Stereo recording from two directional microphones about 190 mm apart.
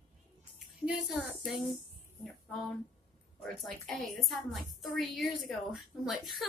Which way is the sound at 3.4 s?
Centre (ahead or behind).